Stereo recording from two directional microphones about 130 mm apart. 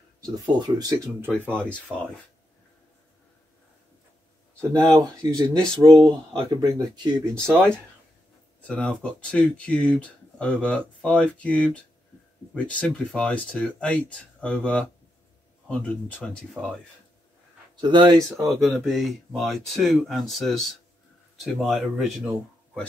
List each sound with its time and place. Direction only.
0.2 s speech: 30° right (ahead or behind)
1.9 s speech: 10° right (ahead or behind)
4.7 s speech: 35° right (ahead or behind)
7.3 s speech: 20° right (ahead or behind)
8.6 s speech: 10° left (ahead or behind)
17.7 s speech: 35° right (ahead or behind)
18.3 s speech: centre (ahead or behind)